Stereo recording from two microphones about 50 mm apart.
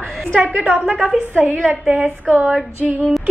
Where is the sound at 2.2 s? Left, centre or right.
Right.